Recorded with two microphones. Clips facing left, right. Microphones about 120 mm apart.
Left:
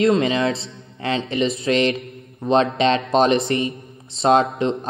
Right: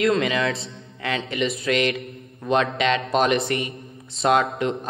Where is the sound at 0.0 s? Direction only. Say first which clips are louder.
Left 3 dB; 30° left (ahead or behind).